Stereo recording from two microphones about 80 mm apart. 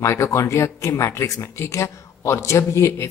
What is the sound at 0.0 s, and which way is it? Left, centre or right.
Speech, left.